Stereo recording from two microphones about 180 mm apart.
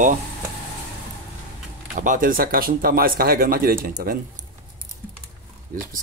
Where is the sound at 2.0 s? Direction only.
45° right (ahead or behind).